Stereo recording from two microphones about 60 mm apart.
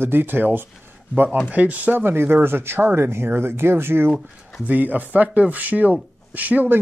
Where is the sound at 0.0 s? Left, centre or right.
Right.